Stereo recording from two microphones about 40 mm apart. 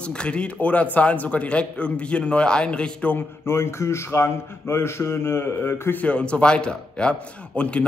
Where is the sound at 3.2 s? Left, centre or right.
Left.